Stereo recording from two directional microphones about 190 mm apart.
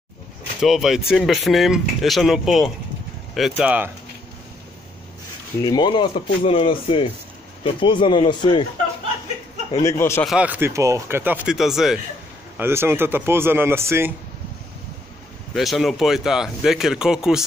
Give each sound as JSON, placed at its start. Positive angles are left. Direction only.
{"t": 0.6, "sound": "speech", "side_deg": 0}
{"t": 5.6, "sound": "a man's voice", "side_deg": 20}
{"t": 9.8, "sound": "speech", "side_deg": 15}
{"t": 10.2, "sound": "speech", "side_deg": -5}
{"t": 12.5, "sound": "speech", "side_deg": -10}
{"t": 15.5, "sound": "speech", "side_deg": 0}